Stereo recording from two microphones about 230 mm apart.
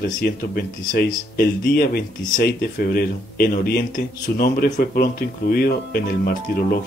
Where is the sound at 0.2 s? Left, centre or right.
Left.